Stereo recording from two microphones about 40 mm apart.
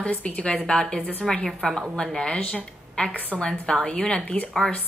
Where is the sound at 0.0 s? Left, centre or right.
Left.